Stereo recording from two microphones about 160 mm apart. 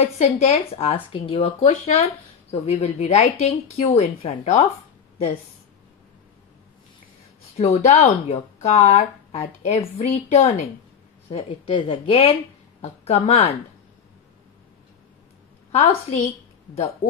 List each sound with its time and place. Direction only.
0.0 s speech: 45° left (ahead or behind)
7.5 s a woman's voice: 40° left (ahead or behind)
15.7 s speech: 40° left (ahead or behind)